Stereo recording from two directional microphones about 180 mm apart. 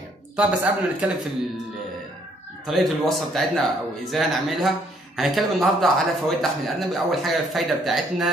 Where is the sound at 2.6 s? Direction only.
Centre (ahead or behind).